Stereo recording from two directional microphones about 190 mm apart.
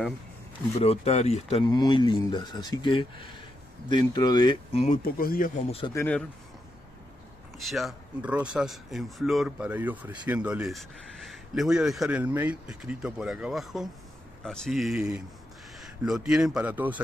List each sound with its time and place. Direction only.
0.7 s speech: 35° left (ahead or behind)
4.8 s speech: 45° left (ahead or behind)
5.7 s speech: 30° left (ahead or behind)
5.9 s speech: 10° left (ahead or behind)
7.5 s a man's voice: centre (ahead or behind)